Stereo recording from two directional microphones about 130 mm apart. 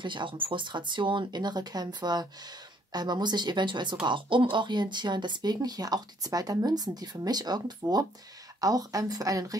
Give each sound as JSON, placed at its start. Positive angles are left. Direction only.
{"t": 0.0, "sound": "a woman's voice", "side_deg": -40}